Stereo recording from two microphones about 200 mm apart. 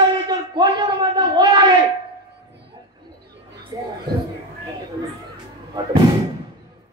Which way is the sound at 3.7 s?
20° right (ahead or behind).